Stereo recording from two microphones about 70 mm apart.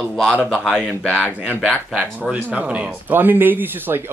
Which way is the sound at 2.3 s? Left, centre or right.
Right.